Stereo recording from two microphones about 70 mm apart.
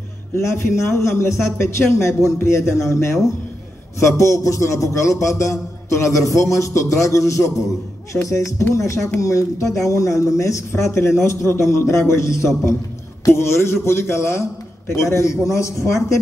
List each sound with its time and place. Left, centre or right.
0.4 s a man's voice: left